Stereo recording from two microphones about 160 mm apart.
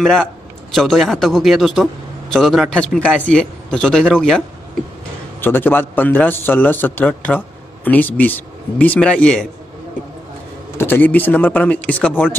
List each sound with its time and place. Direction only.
0.0 s speech: centre (ahead or behind)
5.4 s a man's voice: 10° left (ahead or behind)
10.8 s a man's voice: 10° left (ahead or behind)